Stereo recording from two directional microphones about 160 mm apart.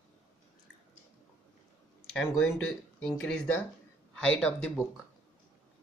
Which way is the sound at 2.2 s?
Centre (ahead or behind).